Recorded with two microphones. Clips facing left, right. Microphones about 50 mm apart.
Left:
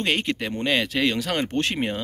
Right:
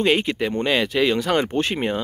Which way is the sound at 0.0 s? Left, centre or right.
Centre.